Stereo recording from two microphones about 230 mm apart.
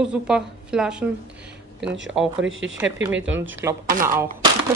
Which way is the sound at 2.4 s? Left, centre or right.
Right.